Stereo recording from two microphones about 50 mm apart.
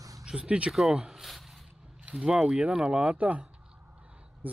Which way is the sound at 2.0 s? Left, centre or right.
Centre.